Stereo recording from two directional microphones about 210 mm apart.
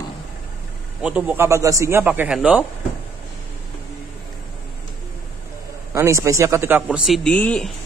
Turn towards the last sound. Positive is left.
turn(degrees=5)  # may be behind; listen again after turning